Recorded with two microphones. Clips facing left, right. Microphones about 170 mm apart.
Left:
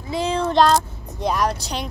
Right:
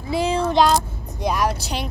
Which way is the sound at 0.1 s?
10° right (ahead or behind).